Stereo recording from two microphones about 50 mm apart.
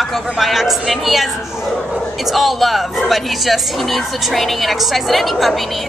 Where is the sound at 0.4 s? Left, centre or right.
Centre.